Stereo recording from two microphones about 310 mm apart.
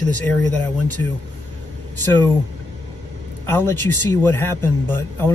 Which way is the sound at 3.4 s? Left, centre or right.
Centre.